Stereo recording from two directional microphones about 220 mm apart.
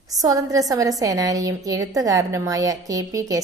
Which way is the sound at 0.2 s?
15° right (ahead or behind).